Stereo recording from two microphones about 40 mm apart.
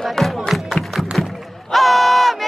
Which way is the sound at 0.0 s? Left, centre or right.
Centre.